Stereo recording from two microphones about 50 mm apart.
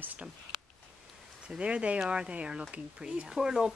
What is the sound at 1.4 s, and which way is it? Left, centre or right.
A woman's voice, right.